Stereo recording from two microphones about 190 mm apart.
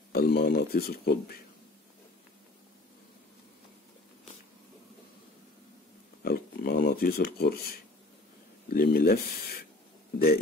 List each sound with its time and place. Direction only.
0.1 s speech: 55° left (ahead or behind)
6.2 s a sound: 55° left (ahead or behind)
8.6 s speech: 55° left (ahead or behind)